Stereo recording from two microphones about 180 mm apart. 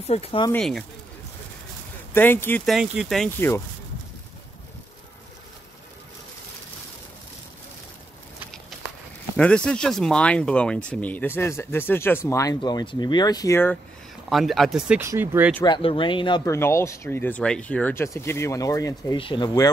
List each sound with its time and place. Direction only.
0.0 s speech: 35° left (ahead or behind)
0.5 s speech: 5° left (ahead or behind)
2.1 s speech: 10° left (ahead or behind)
2.6 s speech: 5° right (ahead or behind)
3.3 s speech: 10° left (ahead or behind)
9.4 s speech: 5° left (ahead or behind)
14.3 s speech: centre (ahead or behind)
15.0 s speech: 15° right (ahead or behind)
15.6 s speech: 25° left (ahead or behind)
16.5 s speech: 15° left (ahead or behind)